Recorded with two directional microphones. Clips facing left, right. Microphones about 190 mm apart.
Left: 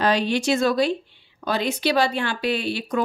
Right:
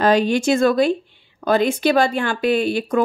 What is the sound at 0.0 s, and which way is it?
Speech, 50° right (ahead or behind).